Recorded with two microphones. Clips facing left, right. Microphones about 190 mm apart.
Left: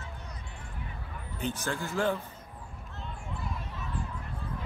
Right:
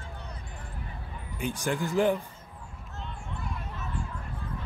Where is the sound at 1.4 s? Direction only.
15° right (ahead or behind).